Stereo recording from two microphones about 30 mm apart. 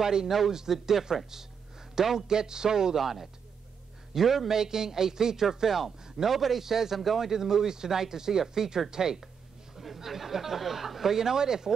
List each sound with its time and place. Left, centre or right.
0.0 s a man's voice: centre
3.0 s speech: centre
7.0 s speech: centre
7.2 s speech: centre
9.8 s speech: centre